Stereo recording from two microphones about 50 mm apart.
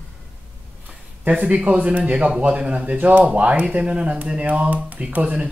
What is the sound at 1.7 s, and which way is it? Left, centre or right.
Speech, right.